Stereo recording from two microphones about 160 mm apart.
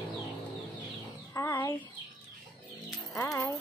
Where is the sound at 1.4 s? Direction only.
20° left (ahead or behind).